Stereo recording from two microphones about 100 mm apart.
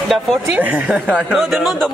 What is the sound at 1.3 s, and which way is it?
Speech, centre (ahead or behind).